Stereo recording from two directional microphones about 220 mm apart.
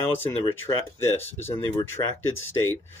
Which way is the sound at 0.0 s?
10° left (ahead or behind).